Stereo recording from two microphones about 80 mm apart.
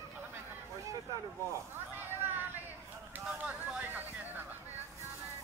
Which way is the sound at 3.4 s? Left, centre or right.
Centre.